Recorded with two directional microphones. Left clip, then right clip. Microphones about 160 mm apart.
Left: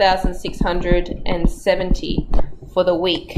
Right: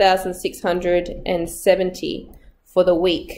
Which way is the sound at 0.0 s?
20° right (ahead or behind).